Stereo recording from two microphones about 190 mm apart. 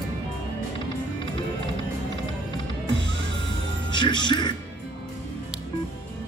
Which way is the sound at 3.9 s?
25° left (ahead or behind).